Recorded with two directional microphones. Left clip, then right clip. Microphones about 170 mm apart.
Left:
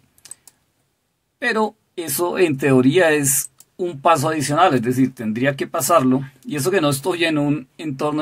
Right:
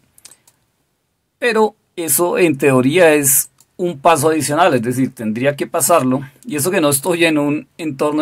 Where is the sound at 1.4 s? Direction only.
30° right (ahead or behind).